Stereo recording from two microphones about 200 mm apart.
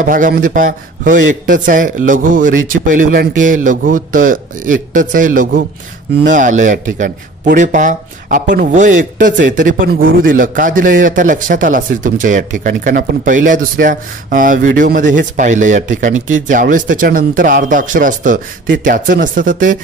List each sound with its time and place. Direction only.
0.0 s a man's voice: 45° right (ahead or behind)